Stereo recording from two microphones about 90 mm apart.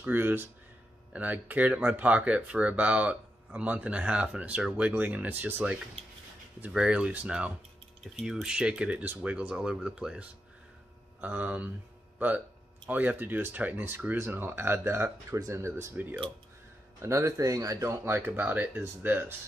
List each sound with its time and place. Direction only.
0.0 s speech: 20° right (ahead or behind)
12.9 s speech: 20° right (ahead or behind)
17.0 s speech: 35° right (ahead or behind)